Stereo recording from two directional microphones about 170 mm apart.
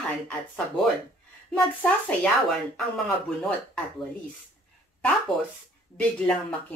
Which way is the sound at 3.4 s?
10° left (ahead or behind).